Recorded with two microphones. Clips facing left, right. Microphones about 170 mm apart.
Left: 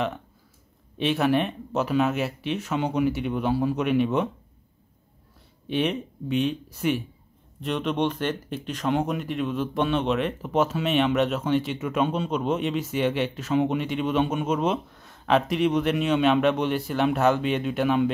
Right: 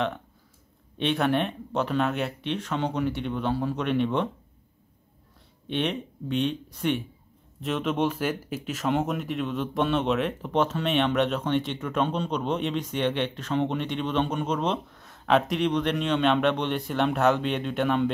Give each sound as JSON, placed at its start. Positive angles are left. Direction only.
{"t": 0.9, "sound": "speech", "side_deg": 5}
{"t": 5.7, "sound": "speech", "side_deg": 0}